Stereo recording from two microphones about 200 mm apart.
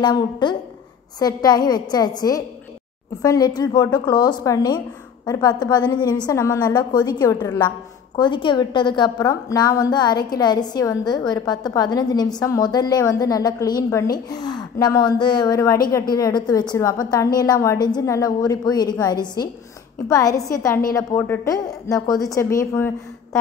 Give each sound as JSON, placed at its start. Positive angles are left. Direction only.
{"t": 0.0, "sound": "a woman's voice", "side_deg": 20}